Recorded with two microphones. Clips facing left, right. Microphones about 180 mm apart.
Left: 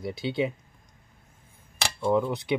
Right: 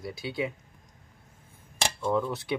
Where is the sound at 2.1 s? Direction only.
15° left (ahead or behind).